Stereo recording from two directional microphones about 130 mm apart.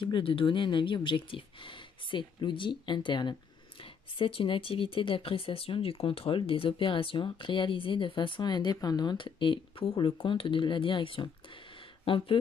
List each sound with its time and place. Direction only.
0.0 s speech: 40° left (ahead or behind)